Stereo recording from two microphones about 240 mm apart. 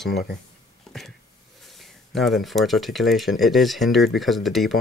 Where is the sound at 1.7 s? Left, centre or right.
Centre.